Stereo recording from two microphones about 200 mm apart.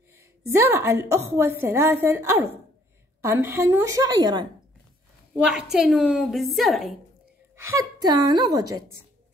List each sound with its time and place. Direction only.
0.5 s a woman's voice: 15° right (ahead or behind)
5.4 s a woman's voice: centre (ahead or behind)
7.5 s a woman's voice: 15° right (ahead or behind)